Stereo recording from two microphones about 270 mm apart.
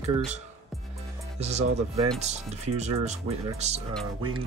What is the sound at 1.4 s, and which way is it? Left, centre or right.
Speech, right.